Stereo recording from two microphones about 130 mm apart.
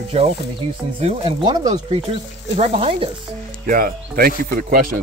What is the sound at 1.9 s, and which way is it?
A man's voice, 45° right (ahead or behind).